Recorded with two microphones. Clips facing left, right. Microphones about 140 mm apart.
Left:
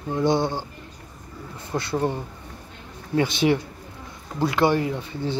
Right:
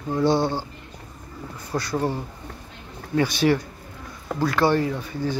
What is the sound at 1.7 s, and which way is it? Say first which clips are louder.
Speech: even; 25° left (ahead or behind).